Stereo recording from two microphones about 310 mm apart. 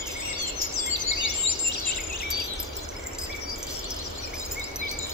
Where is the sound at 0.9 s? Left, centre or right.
Left.